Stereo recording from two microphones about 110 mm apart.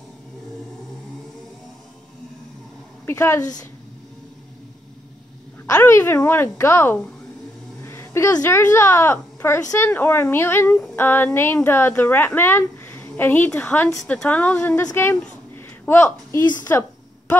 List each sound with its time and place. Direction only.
3.1 s speech: 25° left (ahead or behind)
5.8 s speech: 20° left (ahead or behind)
7.8 s a sound: 25° left (ahead or behind)
8.4 s a woman's voice: 25° left (ahead or behind)
15.9 s speech: 25° left (ahead or behind)